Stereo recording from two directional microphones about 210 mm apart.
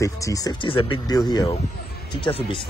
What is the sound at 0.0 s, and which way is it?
Speech, 15° left (ahead or behind).